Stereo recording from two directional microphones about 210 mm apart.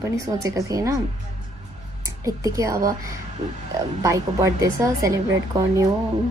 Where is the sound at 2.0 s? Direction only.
15° right (ahead or behind).